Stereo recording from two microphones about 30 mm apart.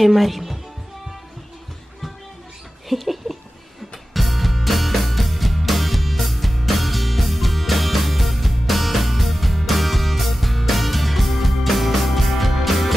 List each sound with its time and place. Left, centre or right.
0.0 s a woman's voice: centre
2.9 s a sound: centre
4.1 s music: centre